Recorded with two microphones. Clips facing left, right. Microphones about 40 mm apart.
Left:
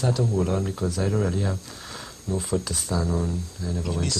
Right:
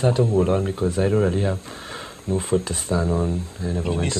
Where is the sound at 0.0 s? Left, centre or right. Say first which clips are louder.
Right 5 dB; right.